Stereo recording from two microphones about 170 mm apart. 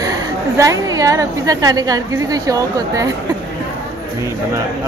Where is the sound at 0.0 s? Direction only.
20° right (ahead or behind).